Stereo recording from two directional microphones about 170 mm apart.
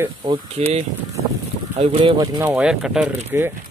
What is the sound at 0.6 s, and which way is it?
Speech, 40° right (ahead or behind).